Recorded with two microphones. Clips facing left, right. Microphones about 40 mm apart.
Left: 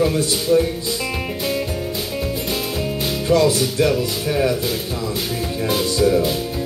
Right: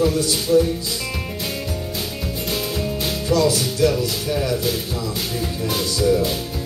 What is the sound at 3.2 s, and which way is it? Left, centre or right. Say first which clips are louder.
Music: left 3 dB; left.